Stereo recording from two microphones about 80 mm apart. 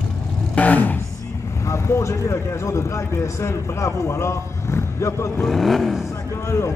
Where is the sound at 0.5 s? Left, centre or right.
Centre.